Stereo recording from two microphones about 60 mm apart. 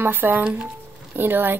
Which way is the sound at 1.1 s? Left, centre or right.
Right.